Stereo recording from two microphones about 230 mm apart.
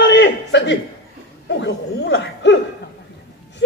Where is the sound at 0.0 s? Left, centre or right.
Left.